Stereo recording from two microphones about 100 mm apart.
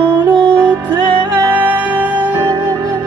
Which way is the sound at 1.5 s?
15° right (ahead or behind).